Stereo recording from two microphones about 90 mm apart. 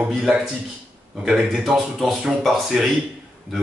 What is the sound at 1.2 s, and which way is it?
Mantra, centre (ahead or behind).